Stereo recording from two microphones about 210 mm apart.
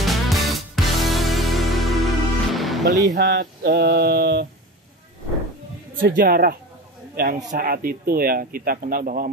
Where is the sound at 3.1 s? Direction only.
50° right (ahead or behind).